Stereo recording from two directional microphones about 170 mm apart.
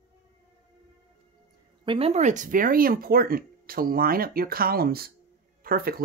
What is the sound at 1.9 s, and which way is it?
Speech, 35° right (ahead or behind).